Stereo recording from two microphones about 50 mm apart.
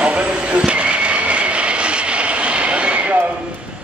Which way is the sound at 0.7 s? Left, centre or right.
Right.